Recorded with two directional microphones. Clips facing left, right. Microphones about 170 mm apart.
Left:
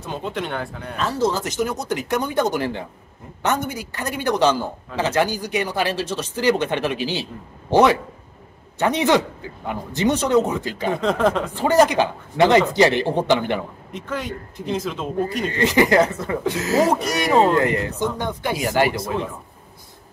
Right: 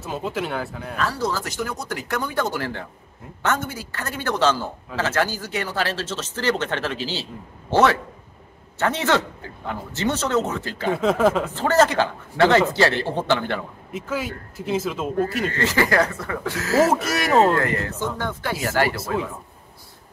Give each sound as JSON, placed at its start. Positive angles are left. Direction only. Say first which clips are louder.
{"t": 0.0, "sound": "speech", "louder": "even", "side_deg": -5}
{"t": 0.9, "sound": "a man's voice", "louder": "left 4 dB", "side_deg": 20}
{"t": 10.9, "sound": "speech", "louder": "right 1 dB", "side_deg": -5}
{"t": 11.5, "sound": "a man's voice", "louder": "left 2 dB", "side_deg": 15}
{"t": 13.9, "sound": "speech", "louder": "right 1 dB", "side_deg": -5}
{"t": 15.5, "sound": "speech", "louder": "left 6 dB", "side_deg": 15}
{"t": 16.9, "sound": "speech", "louder": "left 1 dB", "side_deg": -5}
{"t": 17.5, "sound": "a man's voice", "louder": "left 3 dB", "side_deg": 20}